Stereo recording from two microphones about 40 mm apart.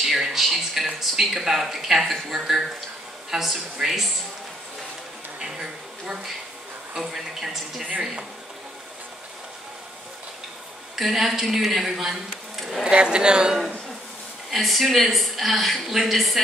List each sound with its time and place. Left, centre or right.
0.0 s a sound: centre
1.1 s a woman's voice: centre
7.0 s speech: centre
11.0 s speech: centre
12.9 s a woman's voice: right
14.5 s speech: centre